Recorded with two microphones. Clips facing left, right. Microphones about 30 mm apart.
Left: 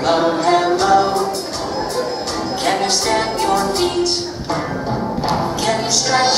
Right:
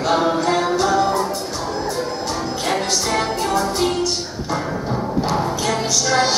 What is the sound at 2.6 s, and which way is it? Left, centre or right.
Music, left.